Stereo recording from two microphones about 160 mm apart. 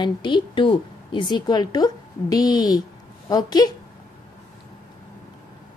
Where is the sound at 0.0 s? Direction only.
30° left (ahead or behind).